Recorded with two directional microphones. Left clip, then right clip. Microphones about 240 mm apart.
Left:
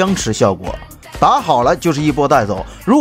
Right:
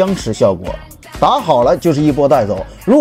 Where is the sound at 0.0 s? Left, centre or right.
Centre.